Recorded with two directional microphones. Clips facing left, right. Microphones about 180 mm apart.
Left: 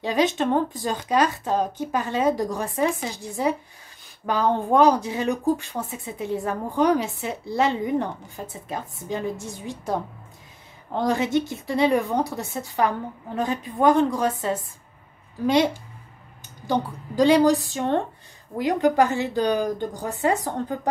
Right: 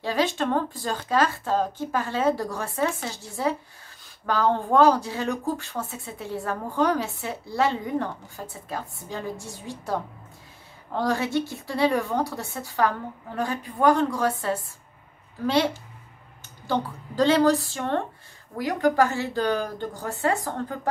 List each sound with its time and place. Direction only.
0.0 s speech: 20° left (ahead or behind)